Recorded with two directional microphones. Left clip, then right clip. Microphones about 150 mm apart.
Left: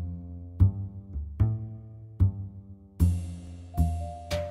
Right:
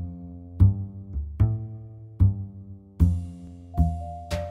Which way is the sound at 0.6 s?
Centre (ahead or behind).